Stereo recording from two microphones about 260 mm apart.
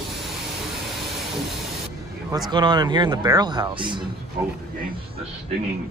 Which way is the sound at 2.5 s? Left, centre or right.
Centre.